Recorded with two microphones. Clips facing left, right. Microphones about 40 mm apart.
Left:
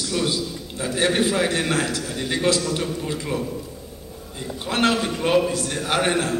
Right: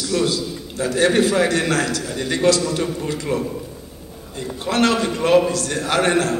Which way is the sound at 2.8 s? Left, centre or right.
Centre.